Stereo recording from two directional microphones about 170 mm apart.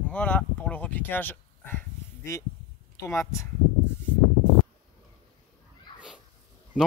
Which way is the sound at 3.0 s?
15° left (ahead or behind).